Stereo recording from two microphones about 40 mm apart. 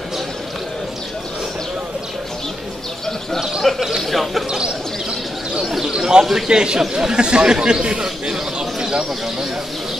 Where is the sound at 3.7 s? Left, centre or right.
Centre.